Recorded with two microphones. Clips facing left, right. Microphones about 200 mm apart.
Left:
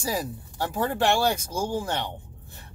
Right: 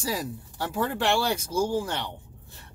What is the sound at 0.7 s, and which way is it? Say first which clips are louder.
Speech: left 1 dB; 45° left (ahead or behind).